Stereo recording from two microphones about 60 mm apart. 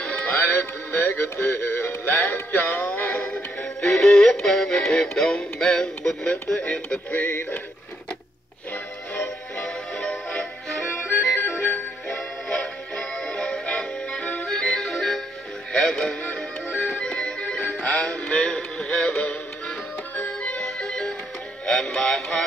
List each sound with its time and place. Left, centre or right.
0.0 s music: centre
0.4 s music: left
7.1 s music: left
9.6 s music: centre
11.4 s music: left
12.4 s music: centre
17.8 s synthetic singing: centre
20.2 s music: left